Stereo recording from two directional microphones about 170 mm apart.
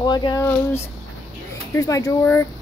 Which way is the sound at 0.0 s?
25° left (ahead or behind).